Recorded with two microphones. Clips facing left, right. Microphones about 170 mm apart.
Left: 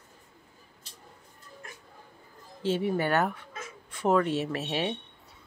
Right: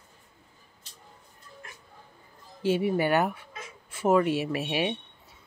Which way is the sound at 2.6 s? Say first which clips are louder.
Right 2 dB; 10° right (ahead or behind).